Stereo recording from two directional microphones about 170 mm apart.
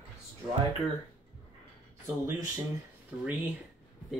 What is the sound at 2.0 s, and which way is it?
Speech, 20° right (ahead or behind).